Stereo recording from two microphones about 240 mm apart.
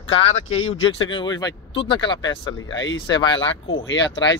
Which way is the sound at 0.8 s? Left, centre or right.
Left.